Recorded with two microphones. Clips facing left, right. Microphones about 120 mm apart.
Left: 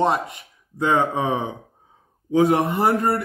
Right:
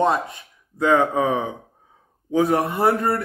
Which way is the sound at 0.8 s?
20° left (ahead or behind).